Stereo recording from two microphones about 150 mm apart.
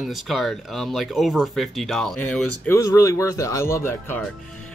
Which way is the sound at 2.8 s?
20° left (ahead or behind).